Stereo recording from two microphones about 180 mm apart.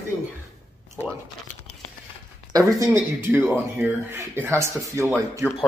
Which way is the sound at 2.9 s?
10° right (ahead or behind).